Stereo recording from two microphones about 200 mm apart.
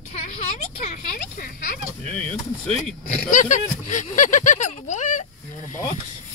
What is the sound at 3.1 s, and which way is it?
Speech, 40° left (ahead or behind).